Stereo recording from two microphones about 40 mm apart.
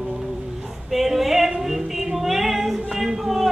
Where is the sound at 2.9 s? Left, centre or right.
Centre.